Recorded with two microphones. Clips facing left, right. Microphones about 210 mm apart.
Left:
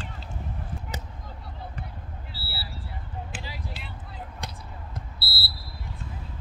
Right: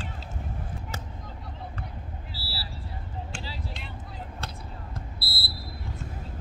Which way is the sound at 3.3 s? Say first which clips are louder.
Even; 15° left (ahead or behind).